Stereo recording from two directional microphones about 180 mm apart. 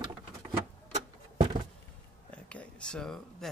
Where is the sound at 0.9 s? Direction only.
40° right (ahead or behind).